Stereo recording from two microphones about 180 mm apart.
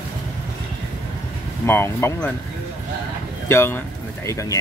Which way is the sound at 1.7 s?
15° left (ahead or behind).